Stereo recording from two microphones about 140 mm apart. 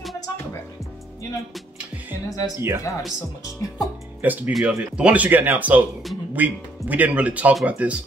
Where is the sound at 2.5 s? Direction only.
20° right (ahead or behind).